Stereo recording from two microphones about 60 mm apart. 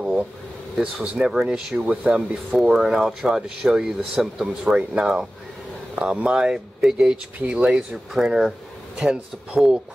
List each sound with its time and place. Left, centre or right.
0.0 s air conditioning: centre
0.7 s speech: centre